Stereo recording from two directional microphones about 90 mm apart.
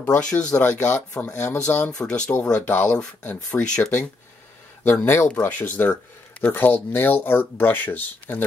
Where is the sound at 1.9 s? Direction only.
10° left (ahead or behind).